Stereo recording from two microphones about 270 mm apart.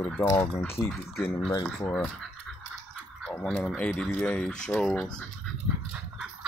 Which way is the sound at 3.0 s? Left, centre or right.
Centre.